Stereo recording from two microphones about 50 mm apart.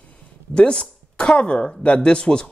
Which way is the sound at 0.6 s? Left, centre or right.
Centre.